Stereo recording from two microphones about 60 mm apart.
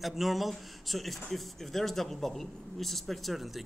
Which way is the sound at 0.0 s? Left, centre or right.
Centre.